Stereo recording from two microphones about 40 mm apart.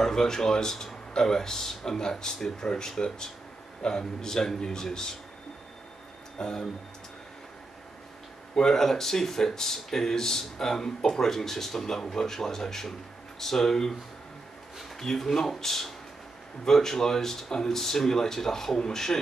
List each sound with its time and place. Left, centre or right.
0.0 s speech: centre
6.3 s speech: centre
8.5 s speech: centre
15.0 s speech: centre